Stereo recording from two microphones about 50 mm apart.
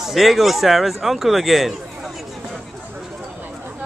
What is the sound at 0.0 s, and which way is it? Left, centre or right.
Speech, centre.